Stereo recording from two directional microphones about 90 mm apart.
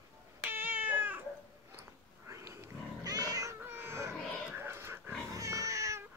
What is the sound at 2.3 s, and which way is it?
Wild animals, 35° right (ahead or behind).